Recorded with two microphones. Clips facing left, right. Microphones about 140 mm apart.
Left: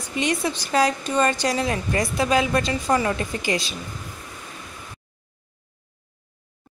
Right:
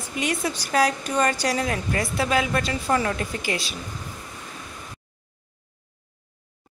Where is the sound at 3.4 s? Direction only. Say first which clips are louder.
Left 3 dB; 5° right (ahead or behind).